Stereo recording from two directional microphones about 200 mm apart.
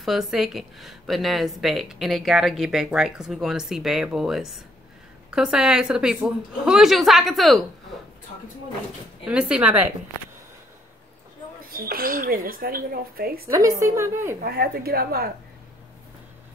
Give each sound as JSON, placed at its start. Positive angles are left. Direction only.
{"t": 0.0, "sound": "speech", "side_deg": 0}
{"t": 9.3, "sound": "a woman's voice", "side_deg": -5}
{"t": 11.7, "sound": "speech", "side_deg": -45}
{"t": 13.5, "sound": "a woman's voice", "side_deg": -15}
{"t": 14.4, "sound": "speech", "side_deg": -50}